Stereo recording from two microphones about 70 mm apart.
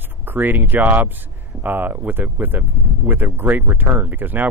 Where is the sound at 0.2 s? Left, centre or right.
Right.